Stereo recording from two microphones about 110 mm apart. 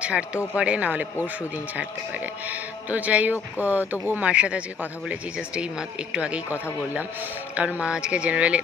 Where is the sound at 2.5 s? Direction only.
15° right (ahead or behind).